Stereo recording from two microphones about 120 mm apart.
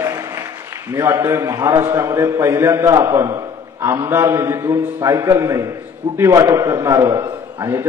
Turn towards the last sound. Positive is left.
turn(degrees=-25)  # may be behind; listen again after turning